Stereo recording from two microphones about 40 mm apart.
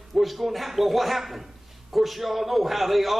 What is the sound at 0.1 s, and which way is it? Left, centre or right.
A man's voice, centre.